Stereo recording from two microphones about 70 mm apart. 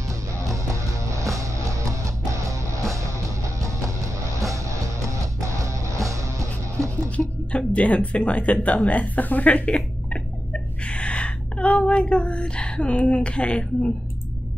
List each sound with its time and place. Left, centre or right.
0.1 s music: right
4.4 s music: right
7.1 s speech: centre
9.8 s a sound: centre